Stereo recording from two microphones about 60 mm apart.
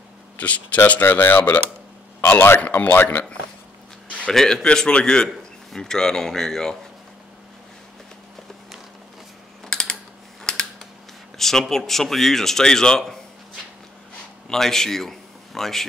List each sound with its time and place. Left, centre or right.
0.4 s speech: left
2.6 s speech: left
4.3 s a man's voice: centre
9.7 s typing: centre
11.3 s speech: centre
14.5 s a man's voice: centre